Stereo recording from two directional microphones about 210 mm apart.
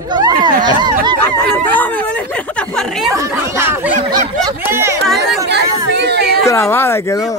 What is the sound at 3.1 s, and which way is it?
Speech, 15° right (ahead or behind).